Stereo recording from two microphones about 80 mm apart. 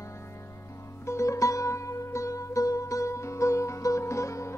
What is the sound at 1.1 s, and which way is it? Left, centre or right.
Music, left.